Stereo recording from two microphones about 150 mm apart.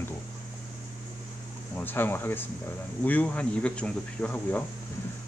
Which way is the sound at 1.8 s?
15° left (ahead or behind).